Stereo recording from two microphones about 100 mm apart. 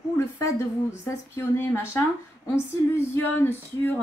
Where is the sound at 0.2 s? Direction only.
30° left (ahead or behind).